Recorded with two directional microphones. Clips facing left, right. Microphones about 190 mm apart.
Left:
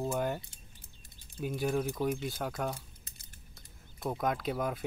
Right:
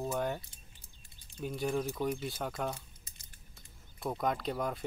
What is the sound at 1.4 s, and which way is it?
Speech, 5° left (ahead or behind).